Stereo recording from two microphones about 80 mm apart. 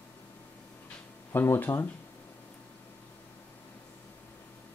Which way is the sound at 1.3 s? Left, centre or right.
Left.